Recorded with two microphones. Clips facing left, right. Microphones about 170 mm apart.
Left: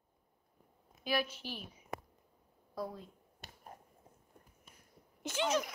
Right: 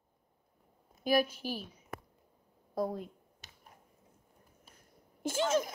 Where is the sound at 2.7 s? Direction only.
45° right (ahead or behind).